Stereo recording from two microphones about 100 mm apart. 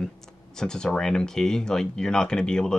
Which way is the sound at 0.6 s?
5° left (ahead or behind).